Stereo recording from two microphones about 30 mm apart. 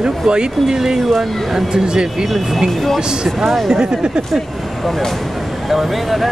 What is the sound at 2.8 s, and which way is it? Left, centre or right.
Speech, centre.